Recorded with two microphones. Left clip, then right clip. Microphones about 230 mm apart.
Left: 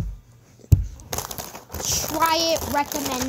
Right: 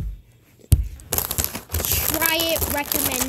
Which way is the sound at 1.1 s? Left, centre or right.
Right.